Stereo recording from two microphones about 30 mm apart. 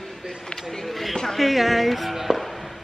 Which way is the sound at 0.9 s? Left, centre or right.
Centre.